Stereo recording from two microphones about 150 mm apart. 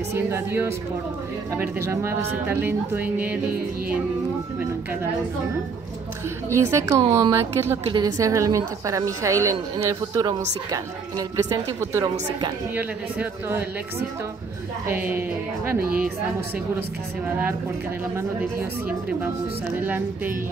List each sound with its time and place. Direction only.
0.1 s speech: 15° right (ahead or behind)
2.4 s speech: 15° right (ahead or behind)
6.5 s a woman's voice: 20° right (ahead or behind)
14.9 s speech: 10° right (ahead or behind)
17.3 s speech: 10° right (ahead or behind)
19.8 s speech: 15° right (ahead or behind)